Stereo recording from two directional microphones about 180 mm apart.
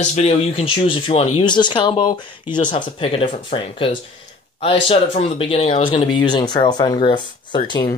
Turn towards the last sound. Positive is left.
turn(degrees=25)  # may be behind; listen again after turning